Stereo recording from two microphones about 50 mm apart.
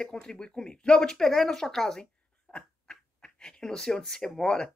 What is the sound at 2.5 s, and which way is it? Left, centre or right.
Speech, centre.